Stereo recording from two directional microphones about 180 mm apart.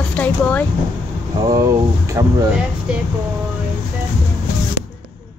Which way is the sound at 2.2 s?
15° right (ahead or behind).